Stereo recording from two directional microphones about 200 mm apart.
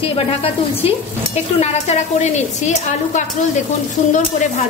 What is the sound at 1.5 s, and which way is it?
A woman's voice, 35° left (ahead or behind).